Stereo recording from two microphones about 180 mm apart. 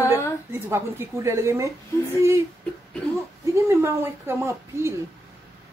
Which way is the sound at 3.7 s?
15° right (ahead or behind).